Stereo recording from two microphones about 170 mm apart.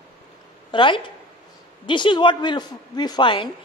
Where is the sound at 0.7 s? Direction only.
30° left (ahead or behind).